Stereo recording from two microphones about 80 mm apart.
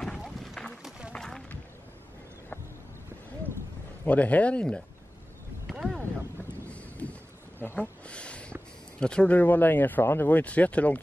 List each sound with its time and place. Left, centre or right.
0.2 s a sound: centre
0.8 s run: centre
1.1 s music: centre
4.0 s speech: centre
5.7 s boat: centre
6.7 s a sound: centre
9.0 s speech: centre